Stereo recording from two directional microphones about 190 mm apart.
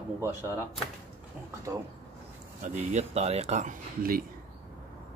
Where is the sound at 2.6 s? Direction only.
40° right (ahead or behind).